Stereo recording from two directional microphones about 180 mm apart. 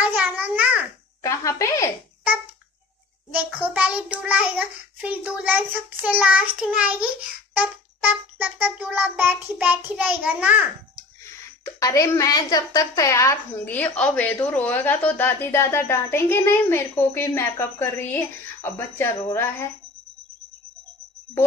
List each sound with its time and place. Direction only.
0.0 s babbling: 10° right (ahead or behind)
1.2 s a woman's voice: 15° left (ahead or behind)
3.3 s child singing: 10° right (ahead or behind)
11.6 s a woman's voice: 20° left (ahead or behind)